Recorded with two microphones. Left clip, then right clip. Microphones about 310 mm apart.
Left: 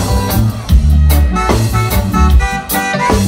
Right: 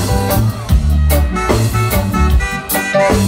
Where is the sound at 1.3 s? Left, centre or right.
Centre.